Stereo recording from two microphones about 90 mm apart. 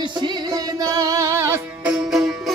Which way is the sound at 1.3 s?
30° right (ahead or behind).